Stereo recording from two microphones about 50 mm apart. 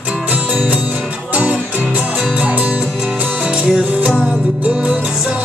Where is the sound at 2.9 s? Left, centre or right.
Centre.